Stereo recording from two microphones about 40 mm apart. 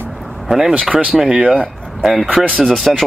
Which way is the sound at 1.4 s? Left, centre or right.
Right.